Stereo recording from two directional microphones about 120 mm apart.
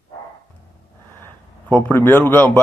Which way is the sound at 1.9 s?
15° left (ahead or behind).